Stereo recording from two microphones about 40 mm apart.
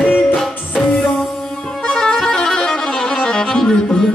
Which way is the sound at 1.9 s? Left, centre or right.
Centre.